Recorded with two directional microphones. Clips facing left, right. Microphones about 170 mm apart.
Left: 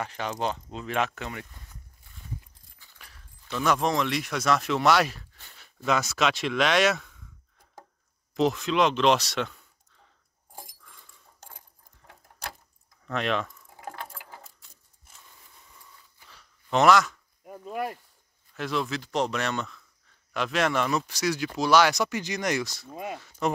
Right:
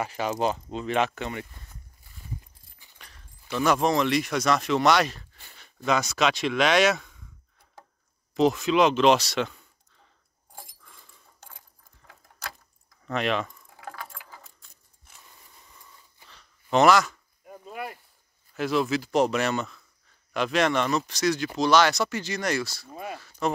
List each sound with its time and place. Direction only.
0.0 s speech: 5° right (ahead or behind)
3.4 s speech: 5° right (ahead or behind)
8.4 s speech: centre (ahead or behind)
13.0 s speech: centre (ahead or behind)
13.7 s mechanisms: 25° left (ahead or behind)
16.3 s a sound: 5° left (ahead or behind)
17.6 s speech: 45° left (ahead or behind)
18.5 s speech: 5° right (ahead or behind); by 23.5 s 20° left (ahead or behind)